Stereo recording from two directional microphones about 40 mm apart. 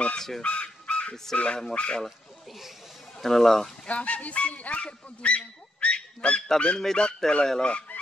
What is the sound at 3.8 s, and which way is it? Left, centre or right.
Speech, left.